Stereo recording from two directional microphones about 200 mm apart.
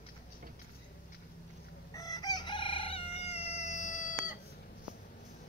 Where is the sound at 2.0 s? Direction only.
20° left (ahead or behind); by 4.4 s 40° left (ahead or behind).